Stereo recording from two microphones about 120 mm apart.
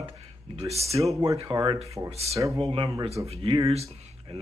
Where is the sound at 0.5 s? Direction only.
60° right (ahead or behind).